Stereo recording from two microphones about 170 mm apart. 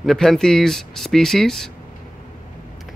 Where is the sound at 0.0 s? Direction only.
Centre (ahead or behind).